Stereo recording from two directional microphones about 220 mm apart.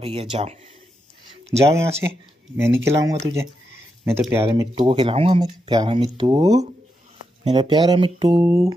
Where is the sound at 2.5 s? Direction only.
10° right (ahead or behind).